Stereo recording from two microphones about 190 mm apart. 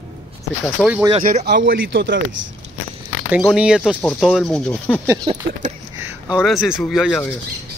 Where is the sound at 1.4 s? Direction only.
60° right (ahead or behind).